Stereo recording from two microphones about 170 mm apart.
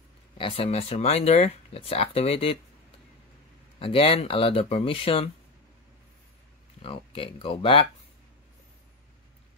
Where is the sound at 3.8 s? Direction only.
35° left (ahead or behind).